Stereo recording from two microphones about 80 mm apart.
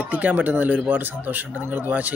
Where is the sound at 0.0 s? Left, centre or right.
Centre.